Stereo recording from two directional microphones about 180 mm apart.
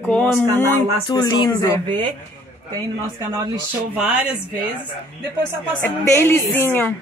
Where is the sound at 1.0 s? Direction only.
25° left (ahead or behind).